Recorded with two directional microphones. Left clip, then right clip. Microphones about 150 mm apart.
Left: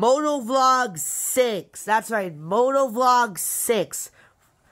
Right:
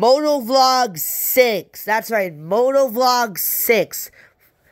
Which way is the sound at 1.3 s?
15° right (ahead or behind).